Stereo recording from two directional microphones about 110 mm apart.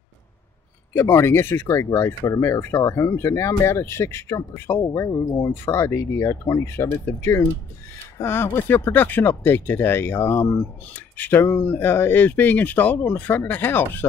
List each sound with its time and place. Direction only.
0.9 s speech: 20° left (ahead or behind)